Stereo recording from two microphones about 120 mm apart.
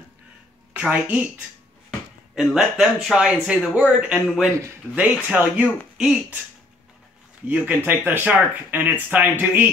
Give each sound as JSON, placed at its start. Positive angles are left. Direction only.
{"t": 0.7, "sound": "speech", "side_deg": -10}
{"t": 7.4, "sound": "speech", "side_deg": -15}